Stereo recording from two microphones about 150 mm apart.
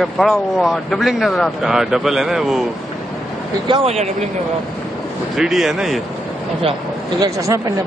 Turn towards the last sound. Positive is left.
turn(degrees=-25)  # may be behind; listen again after turning